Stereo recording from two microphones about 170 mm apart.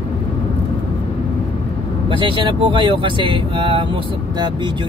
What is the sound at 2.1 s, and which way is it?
Speech, 30° right (ahead or behind).